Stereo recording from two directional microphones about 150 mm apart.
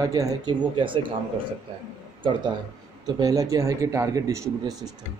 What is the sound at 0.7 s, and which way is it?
Speech, 35° right (ahead or behind).